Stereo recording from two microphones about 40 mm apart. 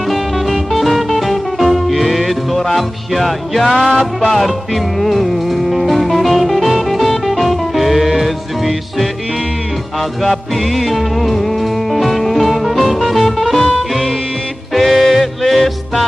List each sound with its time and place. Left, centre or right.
0.1 s music: centre
10.2 s music: centre
14.7 s music: centre